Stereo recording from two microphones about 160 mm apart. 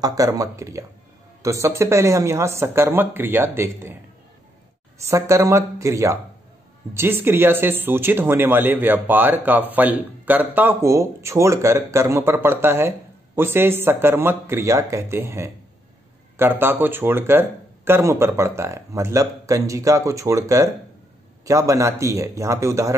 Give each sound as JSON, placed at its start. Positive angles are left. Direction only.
{"t": 0.0, "sound": "speech", "side_deg": -20}
{"t": 5.0, "sound": "speech", "side_deg": -20}